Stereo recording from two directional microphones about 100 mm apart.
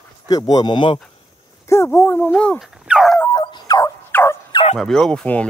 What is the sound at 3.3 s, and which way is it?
Fowl, 45° left (ahead or behind).